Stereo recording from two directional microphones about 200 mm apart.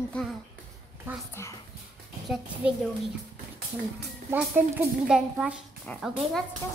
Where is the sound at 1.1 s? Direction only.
10° right (ahead or behind).